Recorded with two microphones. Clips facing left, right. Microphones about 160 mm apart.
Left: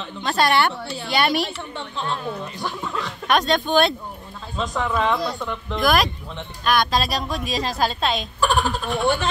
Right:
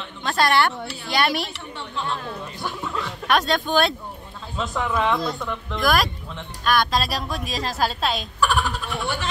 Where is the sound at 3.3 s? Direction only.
Centre (ahead or behind).